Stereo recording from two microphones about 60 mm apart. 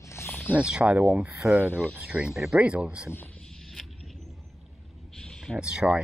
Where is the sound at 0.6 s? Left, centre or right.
Centre.